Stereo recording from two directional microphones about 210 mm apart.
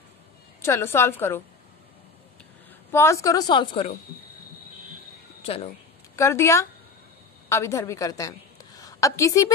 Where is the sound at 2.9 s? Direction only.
10° left (ahead or behind).